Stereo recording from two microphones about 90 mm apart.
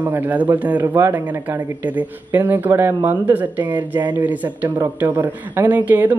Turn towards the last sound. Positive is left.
turn(degrees=-20)  # may be behind; listen again after turning